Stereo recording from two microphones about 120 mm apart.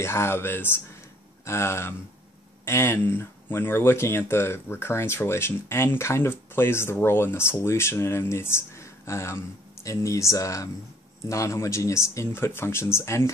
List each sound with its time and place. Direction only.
0.0 s speech: 20° left (ahead or behind)